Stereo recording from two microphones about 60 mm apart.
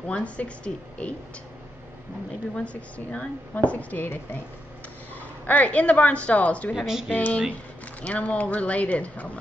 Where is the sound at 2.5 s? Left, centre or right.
Left.